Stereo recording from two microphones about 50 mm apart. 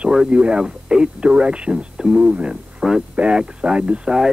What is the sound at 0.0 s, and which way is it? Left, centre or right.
A man's voice, centre.